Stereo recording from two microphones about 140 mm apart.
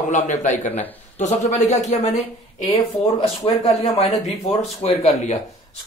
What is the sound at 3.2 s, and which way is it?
Speech, 50° left (ahead or behind).